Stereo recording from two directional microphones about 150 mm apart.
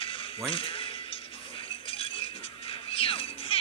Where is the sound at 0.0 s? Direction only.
35° left (ahead or behind).